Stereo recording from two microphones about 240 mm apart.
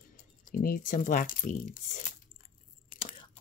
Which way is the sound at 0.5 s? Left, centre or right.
Left.